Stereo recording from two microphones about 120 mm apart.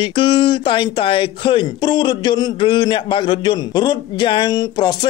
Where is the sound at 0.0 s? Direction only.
45° left (ahead or behind).